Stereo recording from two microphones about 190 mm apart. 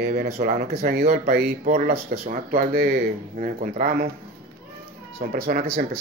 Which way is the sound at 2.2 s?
50° right (ahead or behind).